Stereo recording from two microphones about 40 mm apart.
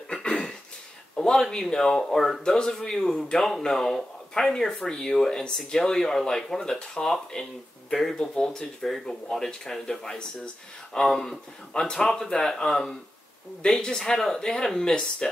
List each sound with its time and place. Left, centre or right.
0.1 s cough: left
1.2 s a sound: centre
1.6 s speech: centre